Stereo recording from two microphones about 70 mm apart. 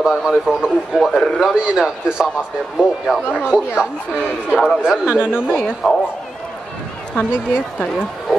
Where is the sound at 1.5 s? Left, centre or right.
Centre.